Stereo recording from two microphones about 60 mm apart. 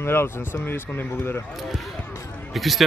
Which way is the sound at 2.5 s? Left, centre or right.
Centre.